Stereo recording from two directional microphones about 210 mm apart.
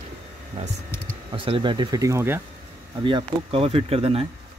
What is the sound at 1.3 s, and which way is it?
Speech, 25° right (ahead or behind).